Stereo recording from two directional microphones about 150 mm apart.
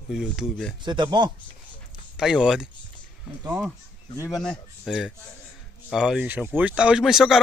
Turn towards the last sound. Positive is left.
turn(degrees=-5)  # may be behind; listen again after turning